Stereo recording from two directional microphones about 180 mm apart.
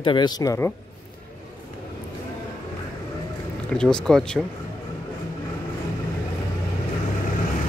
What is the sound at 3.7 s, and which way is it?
Speech, 5° left (ahead or behind).